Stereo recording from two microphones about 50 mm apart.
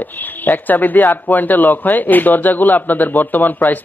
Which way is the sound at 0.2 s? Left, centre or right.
Left.